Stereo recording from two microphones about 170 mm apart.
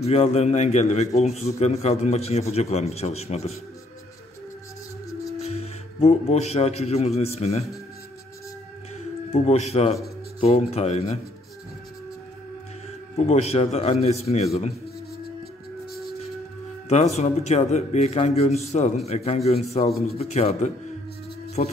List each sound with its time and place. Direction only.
0.0 s a man's voice: 40° left (ahead or behind)
5.4 s speech: 40° left (ahead or behind)
9.3 s a man's voice: 40° left (ahead or behind)
13.1 s a man's voice: 40° left (ahead or behind)
16.9 s a man's voice: 40° left (ahead or behind)
21.6 s music: 45° left (ahead or behind)